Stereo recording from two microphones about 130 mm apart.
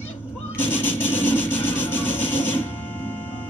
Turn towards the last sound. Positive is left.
turn(degrees=15)  # may be behind; listen again after turning